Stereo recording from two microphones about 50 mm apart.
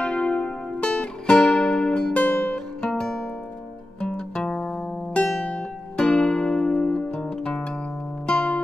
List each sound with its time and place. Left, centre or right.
0.0 s music: left
2.5 s music: centre
4.4 s music: centre